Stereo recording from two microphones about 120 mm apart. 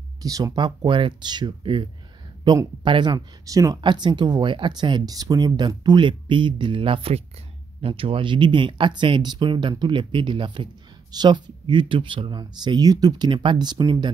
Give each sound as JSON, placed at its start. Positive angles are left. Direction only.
{"t": 0.2, "sound": "speech", "side_deg": -30}